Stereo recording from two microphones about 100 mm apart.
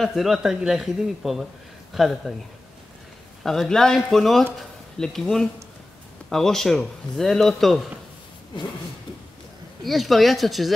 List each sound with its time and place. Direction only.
0.0 s a man's voice: centre (ahead or behind)
3.4 s a man's voice: 5° left (ahead or behind)
9.8 s a man's voice: centre (ahead or behind)